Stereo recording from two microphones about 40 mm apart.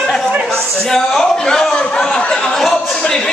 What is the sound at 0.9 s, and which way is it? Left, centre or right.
A man's voice, centre.